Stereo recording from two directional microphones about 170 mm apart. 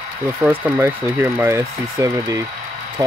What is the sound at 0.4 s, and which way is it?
Speech, 10° right (ahead or behind).